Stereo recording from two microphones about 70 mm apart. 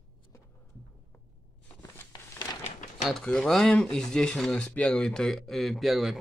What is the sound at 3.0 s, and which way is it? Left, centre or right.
Speech, centre.